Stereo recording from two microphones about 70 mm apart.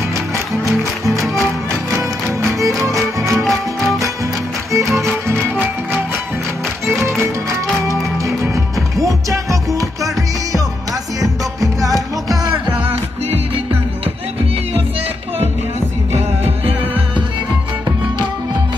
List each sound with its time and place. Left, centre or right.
0.7 s music: right
2.8 s music: right
3.3 s music: centre
4.7 s music: right
7.9 s music: right